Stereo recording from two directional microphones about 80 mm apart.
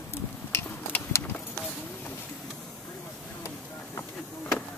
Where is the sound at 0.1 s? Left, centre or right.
Left.